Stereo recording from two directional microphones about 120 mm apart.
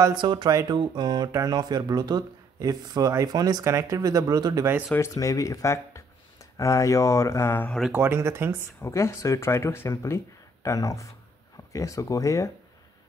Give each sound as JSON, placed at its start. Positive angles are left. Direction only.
{"t": 0.1, "sound": "speech", "side_deg": -40}
{"t": 0.5, "sound": "speech", "side_deg": -30}
{"t": 4.9, "sound": "speech", "side_deg": 25}
{"t": 7.9, "sound": "speech", "side_deg": -20}
{"t": 8.8, "sound": "speech", "side_deg": 25}